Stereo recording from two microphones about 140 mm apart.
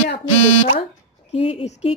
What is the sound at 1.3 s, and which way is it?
Speech, 45° left (ahead or behind).